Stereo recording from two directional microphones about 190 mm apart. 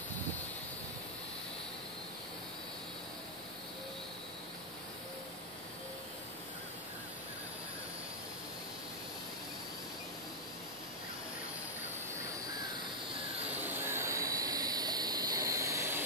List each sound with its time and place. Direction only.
13.6 s jet engine: 10° right (ahead or behind)